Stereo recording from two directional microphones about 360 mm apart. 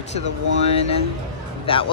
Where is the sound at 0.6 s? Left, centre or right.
Centre.